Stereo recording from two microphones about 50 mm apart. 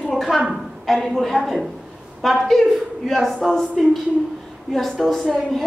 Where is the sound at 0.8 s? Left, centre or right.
Centre.